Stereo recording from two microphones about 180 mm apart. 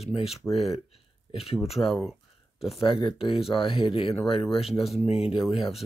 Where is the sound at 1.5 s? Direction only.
Centre (ahead or behind).